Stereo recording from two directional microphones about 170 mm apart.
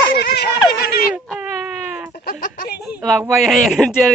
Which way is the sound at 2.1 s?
55° left (ahead or behind).